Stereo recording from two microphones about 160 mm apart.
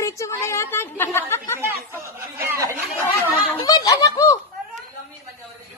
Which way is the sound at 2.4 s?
15° right (ahead or behind).